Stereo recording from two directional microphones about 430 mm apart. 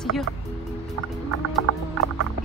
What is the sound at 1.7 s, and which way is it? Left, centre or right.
Music, right.